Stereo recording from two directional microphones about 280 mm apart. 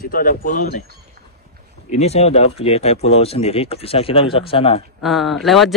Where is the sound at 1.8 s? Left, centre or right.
Left.